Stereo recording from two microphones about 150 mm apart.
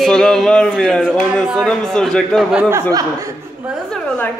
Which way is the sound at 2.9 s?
20° right (ahead or behind).